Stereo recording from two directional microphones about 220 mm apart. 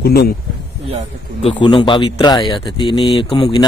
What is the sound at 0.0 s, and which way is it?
Speech, 45° left (ahead or behind).